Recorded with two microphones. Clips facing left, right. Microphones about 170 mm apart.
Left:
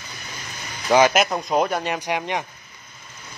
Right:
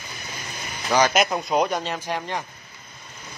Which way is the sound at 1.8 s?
15° left (ahead or behind).